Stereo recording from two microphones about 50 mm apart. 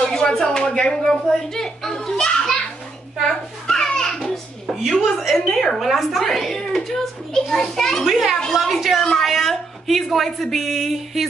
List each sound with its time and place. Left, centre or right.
0.1 s a child's voice: centre
3.3 s children playing: centre
4.6 s a sound: centre
5.3 s a woman's voice: centre
8.1 s a woman's voice: centre